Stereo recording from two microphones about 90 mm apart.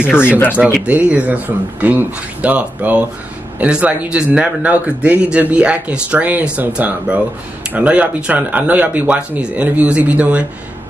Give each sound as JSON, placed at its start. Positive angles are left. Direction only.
{"t": 0.2, "sound": "speech", "side_deg": 20}
{"t": 0.8, "sound": "speech", "side_deg": -15}